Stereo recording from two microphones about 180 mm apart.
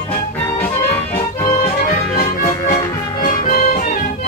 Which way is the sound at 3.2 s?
40° left (ahead or behind).